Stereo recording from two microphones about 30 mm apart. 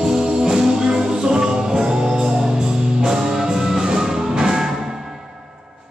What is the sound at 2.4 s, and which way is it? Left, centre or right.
Music, centre.